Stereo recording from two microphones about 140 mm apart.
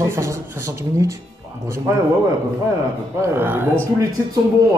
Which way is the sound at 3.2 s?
15° right (ahead or behind).